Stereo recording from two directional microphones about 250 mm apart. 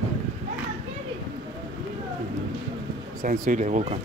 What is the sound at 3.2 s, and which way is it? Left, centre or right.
Speech, right.